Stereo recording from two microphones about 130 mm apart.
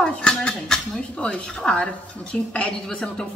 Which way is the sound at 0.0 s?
5° left (ahead or behind).